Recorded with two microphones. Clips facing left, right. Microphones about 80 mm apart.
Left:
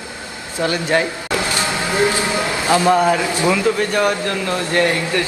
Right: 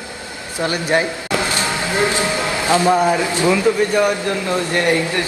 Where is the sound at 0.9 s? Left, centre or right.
Right.